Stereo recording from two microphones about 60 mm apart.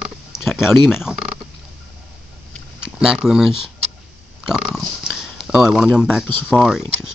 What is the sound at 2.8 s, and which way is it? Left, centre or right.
Speech, centre.